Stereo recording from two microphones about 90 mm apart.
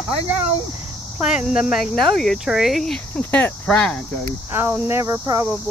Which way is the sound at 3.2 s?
20° left (ahead or behind).